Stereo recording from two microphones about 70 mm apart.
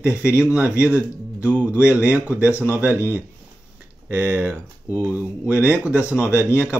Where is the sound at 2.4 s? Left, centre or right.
Left.